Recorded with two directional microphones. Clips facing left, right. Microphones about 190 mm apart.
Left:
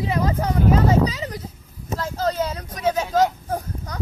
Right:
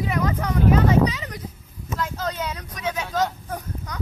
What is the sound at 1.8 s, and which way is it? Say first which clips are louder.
Speech: left 4 dB; 35° left (ahead or behind).